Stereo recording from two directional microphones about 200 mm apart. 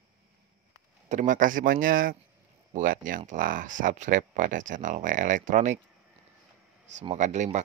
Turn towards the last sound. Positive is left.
turn(degrees=-35)  # may be behind; listen again after turning